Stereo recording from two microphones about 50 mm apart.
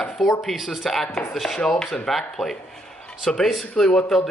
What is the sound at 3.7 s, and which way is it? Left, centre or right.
Speech, centre.